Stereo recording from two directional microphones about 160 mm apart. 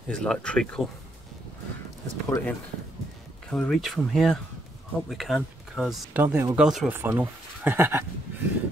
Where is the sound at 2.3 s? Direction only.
20° left (ahead or behind).